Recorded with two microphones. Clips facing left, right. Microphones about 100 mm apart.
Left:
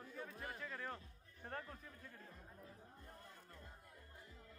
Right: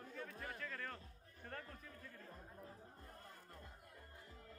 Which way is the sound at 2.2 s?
40° right (ahead or behind).